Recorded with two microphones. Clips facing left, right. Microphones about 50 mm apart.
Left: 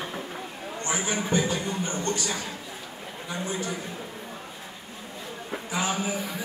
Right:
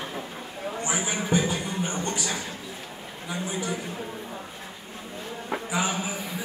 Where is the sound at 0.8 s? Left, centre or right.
Centre.